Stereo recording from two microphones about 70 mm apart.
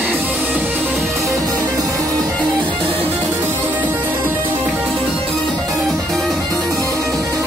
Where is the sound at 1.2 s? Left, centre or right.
Right.